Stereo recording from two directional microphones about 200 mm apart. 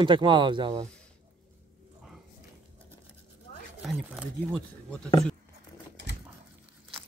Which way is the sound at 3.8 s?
5° right (ahead or behind).